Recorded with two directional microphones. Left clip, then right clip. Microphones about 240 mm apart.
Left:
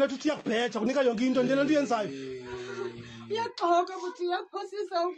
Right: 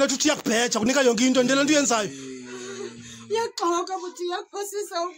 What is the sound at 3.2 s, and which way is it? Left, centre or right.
Speech, right.